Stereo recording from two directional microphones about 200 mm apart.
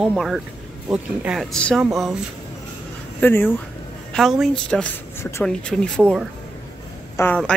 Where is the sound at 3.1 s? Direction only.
10° left (ahead or behind).